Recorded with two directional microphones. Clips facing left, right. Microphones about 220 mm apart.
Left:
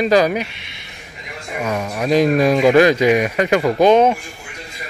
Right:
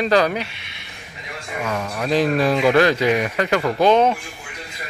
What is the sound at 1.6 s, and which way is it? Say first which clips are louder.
Speech: left 4 dB; 15° left (ahead or behind).